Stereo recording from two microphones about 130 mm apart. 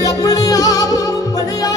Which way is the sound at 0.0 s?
30° left (ahead or behind).